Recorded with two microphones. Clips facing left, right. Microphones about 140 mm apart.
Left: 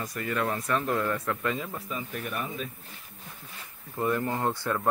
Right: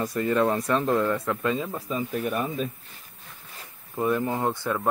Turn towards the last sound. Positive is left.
turn(degrees=-15)  # may be behind; listen again after turning